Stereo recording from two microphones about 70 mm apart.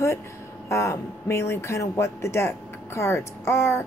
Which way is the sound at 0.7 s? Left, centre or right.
Left.